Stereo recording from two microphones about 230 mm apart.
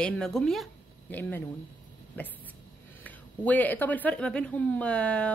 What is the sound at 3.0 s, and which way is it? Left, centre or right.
Speech, centre.